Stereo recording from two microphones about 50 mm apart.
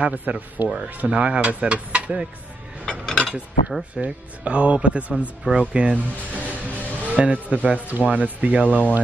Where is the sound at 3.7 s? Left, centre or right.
Centre.